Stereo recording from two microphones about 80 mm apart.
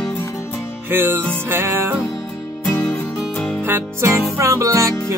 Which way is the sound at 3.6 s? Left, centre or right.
Right.